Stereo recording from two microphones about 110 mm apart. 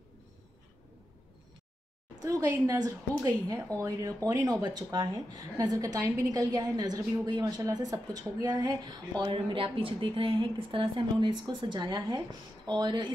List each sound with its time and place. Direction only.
2.2 s a woman's voice: 30° right (ahead or behind)